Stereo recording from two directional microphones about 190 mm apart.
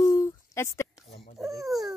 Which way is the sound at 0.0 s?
20° left (ahead or behind).